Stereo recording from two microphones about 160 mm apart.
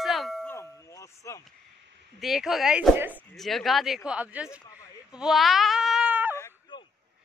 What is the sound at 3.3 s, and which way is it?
Speech, centre (ahead or behind).